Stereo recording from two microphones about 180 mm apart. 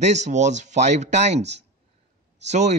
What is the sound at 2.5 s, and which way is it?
Speech, 40° right (ahead or behind).